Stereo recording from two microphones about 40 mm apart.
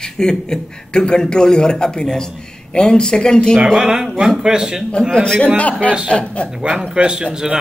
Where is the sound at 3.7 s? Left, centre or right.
Centre.